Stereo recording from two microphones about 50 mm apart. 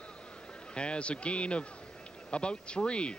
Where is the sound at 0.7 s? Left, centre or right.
Left.